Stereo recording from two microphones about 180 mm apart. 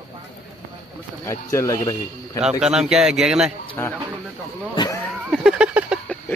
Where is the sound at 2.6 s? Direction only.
5° right (ahead or behind).